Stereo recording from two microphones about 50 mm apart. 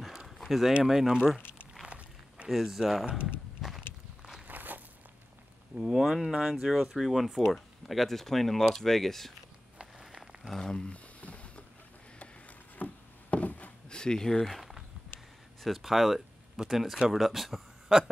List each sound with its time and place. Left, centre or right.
0.0 s a sound: centre
0.4 s speech: centre
1.9 s walk: right
2.5 s speech: centre
3.1 s speech: right
3.6 s walk: centre
4.5 s walk: right
5.8 s speech: centre
9.9 s a sound: centre
10.7 s speech: centre
11.1 s a sound: left
12.7 s wood: left
13.8 s a sound: centre
15.6 s speech: centre